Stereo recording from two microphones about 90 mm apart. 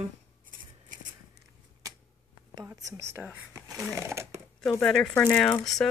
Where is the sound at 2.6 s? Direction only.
30° right (ahead or behind).